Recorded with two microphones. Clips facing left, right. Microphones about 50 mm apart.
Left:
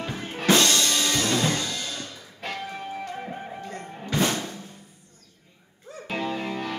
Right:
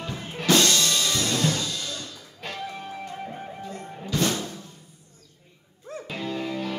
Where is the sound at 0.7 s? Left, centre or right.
Left.